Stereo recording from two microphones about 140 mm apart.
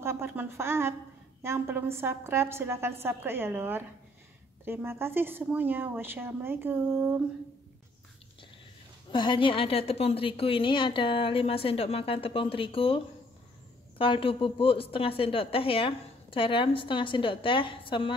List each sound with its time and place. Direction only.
0.0 s a woman's voice: 15° right (ahead or behind)
9.1 s a woman's voice: 35° left (ahead or behind)